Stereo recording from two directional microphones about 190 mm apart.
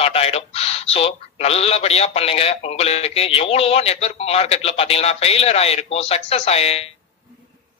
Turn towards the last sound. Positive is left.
turn(degrees=35)  # may be behind; listen again after turning